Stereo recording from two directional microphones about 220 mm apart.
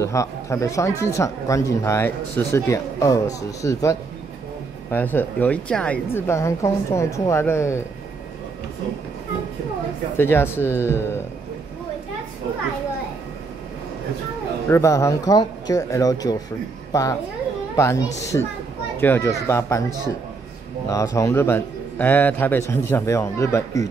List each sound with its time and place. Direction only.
0.0 s speech: 15° left (ahead or behind)
4.9 s speech: 10° left (ahead or behind)
10.1 s speech: 10° left (ahead or behind)
14.7 s speech: 15° left (ahead or behind)
20.9 s speech: 15° left (ahead or behind)